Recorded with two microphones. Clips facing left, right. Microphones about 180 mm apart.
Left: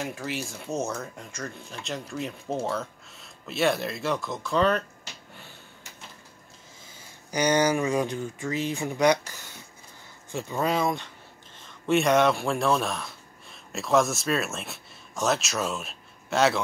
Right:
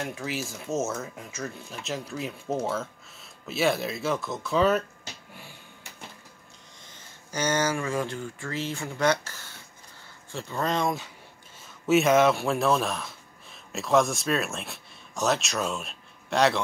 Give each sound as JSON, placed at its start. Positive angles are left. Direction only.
{"t": 0.0, "sound": "speech", "side_deg": 0}
{"t": 6.9, "sound": "speech", "side_deg": 15}